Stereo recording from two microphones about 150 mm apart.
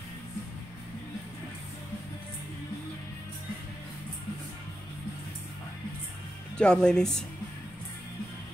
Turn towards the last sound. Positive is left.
turn(degrees=5)  # may be behind; listen again after turning